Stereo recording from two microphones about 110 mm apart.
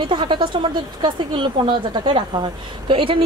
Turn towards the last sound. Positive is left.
turn(degrees=-55)  # may be behind; listen again after turning